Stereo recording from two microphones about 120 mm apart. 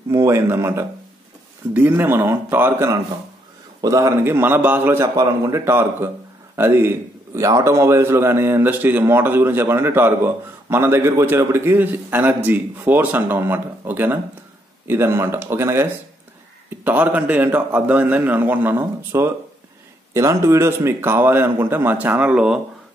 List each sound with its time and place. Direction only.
0.1 s a man's voice: 25° right (ahead or behind); by 22.6 s 5° right (ahead or behind)